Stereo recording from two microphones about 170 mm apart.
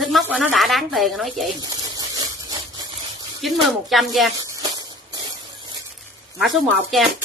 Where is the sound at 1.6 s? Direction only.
20° right (ahead or behind).